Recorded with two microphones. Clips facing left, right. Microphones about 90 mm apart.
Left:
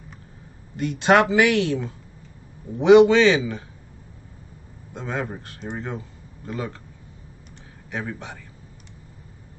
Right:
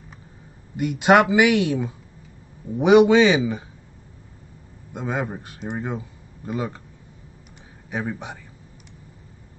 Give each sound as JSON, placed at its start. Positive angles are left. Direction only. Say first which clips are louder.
{"t": 0.7, "sound": "speech", "louder": "right 1 dB", "side_deg": -10}
{"t": 4.9, "sound": "speech", "louder": "right 2 dB", "side_deg": -10}
{"t": 7.9, "sound": "speech", "louder": "right 3 dB", "side_deg": -15}